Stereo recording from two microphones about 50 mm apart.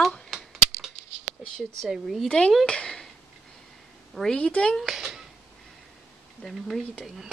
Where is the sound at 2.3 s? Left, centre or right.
Centre.